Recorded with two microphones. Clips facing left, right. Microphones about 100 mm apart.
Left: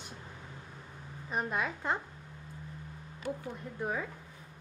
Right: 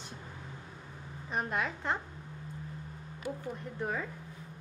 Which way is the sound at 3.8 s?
5° left (ahead or behind).